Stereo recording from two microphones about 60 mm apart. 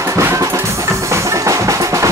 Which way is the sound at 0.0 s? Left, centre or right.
Right.